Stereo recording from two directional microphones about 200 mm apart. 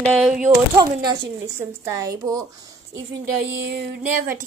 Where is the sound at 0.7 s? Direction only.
20° right (ahead or behind).